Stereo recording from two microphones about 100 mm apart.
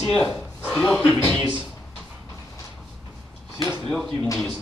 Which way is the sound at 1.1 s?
20° left (ahead or behind).